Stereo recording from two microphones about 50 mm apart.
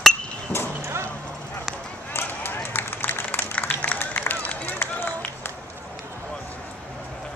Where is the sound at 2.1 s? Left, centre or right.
Left.